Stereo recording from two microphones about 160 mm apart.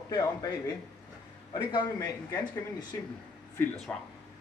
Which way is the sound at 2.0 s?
20° left (ahead or behind).